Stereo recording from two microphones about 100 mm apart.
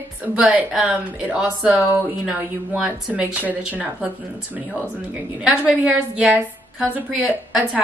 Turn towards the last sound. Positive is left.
turn(degrees=-10)  # may be behind; listen again after turning